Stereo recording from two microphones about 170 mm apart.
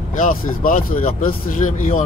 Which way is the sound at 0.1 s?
50° left (ahead or behind).